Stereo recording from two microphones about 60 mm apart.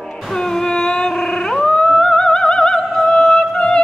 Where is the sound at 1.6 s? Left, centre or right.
Centre.